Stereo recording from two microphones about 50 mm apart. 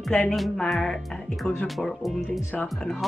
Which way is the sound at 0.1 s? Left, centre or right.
Left.